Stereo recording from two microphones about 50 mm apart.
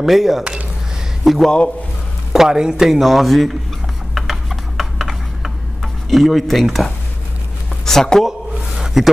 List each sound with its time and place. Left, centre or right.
0.0 s speech: centre
0.4 s speech: right
1.2 s a man's voice: centre
2.3 s speech: centre
4.1 s a sound: centre
6.0 s speech: centre
8.3 s a sound: centre